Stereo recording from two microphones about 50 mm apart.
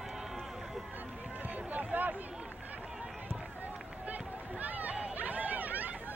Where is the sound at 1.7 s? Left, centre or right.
Right.